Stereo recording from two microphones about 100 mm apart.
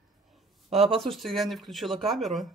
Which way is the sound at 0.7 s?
90° right.